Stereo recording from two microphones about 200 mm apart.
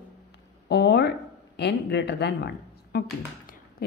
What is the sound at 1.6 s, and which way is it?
Speech, 60° left (ahead or behind).